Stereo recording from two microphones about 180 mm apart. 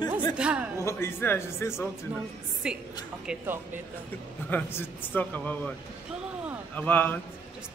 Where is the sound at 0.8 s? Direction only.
15° left (ahead or behind).